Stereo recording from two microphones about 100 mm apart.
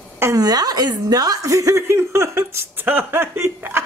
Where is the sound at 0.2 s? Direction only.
35° right (ahead or behind).